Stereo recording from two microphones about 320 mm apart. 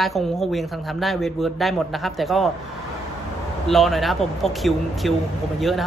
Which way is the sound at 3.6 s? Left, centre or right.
Centre.